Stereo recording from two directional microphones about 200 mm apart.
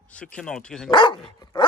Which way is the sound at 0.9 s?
20° left (ahead or behind).